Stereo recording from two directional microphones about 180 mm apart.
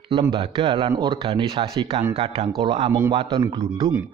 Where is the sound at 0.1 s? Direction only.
25° right (ahead or behind).